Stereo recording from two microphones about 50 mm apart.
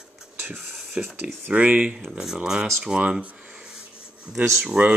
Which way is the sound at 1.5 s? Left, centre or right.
Right.